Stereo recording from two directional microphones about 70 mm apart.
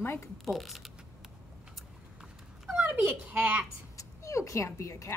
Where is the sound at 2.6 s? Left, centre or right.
Centre.